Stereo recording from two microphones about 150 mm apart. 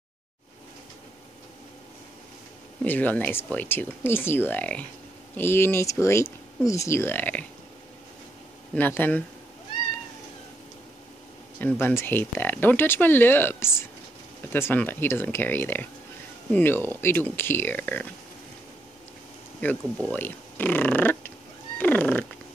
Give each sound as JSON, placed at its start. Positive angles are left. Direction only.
{"t": 2.8, "sound": "speech", "side_deg": 10}
{"t": 8.7, "sound": "speech", "side_deg": 10}
{"t": 11.6, "sound": "speech", "side_deg": 15}
{"t": 20.1, "sound": "speech", "side_deg": 10}
{"t": 21.7, "sound": "cat", "side_deg": 10}